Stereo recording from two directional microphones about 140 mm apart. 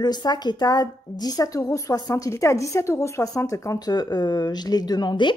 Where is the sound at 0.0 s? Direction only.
30° left (ahead or behind).